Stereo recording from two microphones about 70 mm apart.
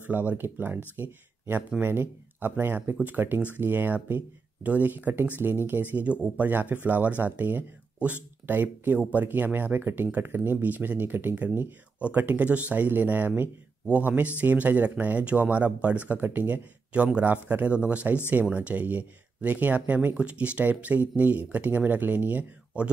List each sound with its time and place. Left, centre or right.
0.0 s speech: right